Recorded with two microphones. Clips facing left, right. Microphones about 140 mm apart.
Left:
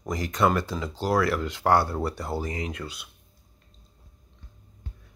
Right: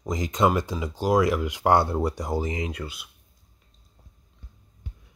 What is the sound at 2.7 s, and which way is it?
Speech, 5° right (ahead or behind).